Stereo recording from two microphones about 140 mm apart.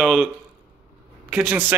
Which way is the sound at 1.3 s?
10° right (ahead or behind).